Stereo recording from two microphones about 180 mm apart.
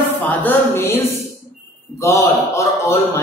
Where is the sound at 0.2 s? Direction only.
10° left (ahead or behind).